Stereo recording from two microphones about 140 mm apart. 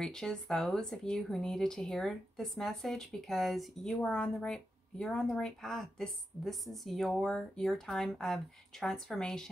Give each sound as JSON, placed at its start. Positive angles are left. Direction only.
{"t": 0.0, "sound": "speech", "side_deg": 5}